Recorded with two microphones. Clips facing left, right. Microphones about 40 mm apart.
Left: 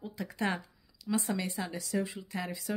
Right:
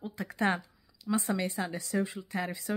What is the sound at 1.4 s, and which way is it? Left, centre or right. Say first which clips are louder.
Speech: right 3 dB; right.